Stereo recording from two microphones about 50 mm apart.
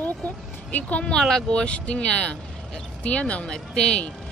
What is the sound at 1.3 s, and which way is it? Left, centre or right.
Speech, centre.